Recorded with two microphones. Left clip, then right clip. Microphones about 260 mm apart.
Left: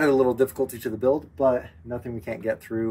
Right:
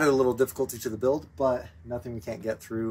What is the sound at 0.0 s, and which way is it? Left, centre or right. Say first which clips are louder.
Speech: left 3 dB; centre.